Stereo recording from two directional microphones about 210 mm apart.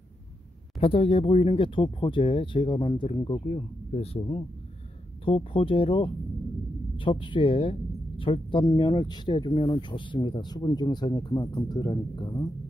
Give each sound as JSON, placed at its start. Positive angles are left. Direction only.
{"t": 0.7, "sound": "speech", "side_deg": 25}